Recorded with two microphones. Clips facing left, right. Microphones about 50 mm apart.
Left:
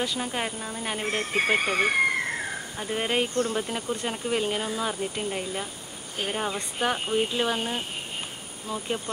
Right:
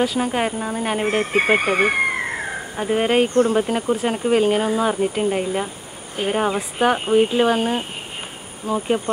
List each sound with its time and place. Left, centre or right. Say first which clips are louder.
0.2 s speech: right 9 dB; right